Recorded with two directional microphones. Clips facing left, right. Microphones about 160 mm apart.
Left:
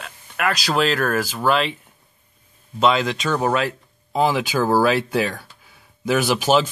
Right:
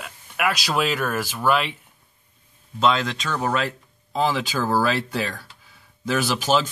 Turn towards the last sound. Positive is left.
turn(degrees=10)  # may be behind; listen again after turning